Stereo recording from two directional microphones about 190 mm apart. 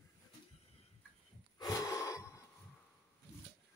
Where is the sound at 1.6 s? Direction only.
15° left (ahead or behind).